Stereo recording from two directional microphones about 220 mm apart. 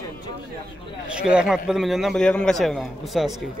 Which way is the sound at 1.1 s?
5° right (ahead or behind).